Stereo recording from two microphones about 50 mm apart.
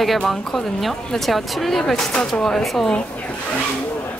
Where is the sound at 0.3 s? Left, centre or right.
Centre.